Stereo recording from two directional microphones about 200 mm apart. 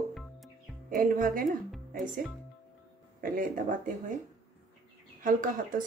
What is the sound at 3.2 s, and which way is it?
Speech, 45° right (ahead or behind).